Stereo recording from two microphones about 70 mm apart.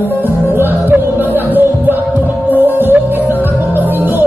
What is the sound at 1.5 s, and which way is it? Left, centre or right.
Music, right.